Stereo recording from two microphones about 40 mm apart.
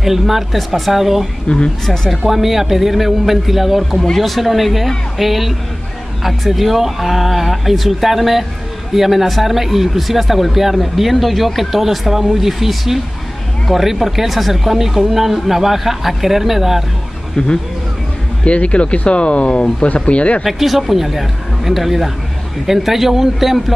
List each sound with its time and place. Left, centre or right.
0.0 s speech: centre
1.5 s speech: left
1.9 s speech: centre
18.4 s speech: left
20.4 s a man's voice: centre